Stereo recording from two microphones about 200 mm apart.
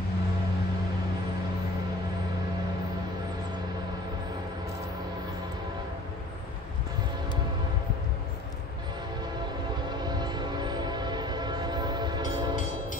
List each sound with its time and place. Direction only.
10.0 s train: 20° right (ahead or behind)